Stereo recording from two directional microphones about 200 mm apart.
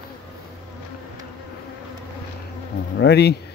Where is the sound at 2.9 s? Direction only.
55° left (ahead or behind).